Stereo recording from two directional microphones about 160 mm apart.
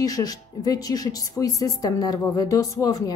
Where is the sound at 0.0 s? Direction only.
25° left (ahead or behind).